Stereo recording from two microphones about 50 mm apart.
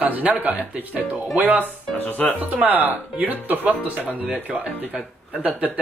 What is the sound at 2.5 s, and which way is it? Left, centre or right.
Speech, right.